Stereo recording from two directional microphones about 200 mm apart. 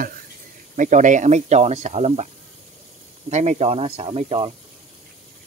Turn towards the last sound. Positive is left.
turn(degrees=-25)  # may be behind; listen again after turning